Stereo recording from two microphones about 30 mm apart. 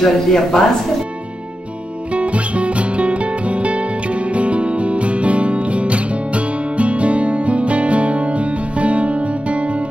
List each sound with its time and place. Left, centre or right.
0.0 s speech: centre
2.1 s music: right